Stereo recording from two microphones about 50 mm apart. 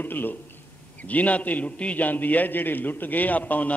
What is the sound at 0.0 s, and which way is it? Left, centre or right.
A man's voice, left.